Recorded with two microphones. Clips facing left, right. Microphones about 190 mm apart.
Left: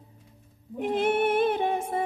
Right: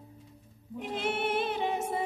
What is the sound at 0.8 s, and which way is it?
Music, 50° left (ahead or behind).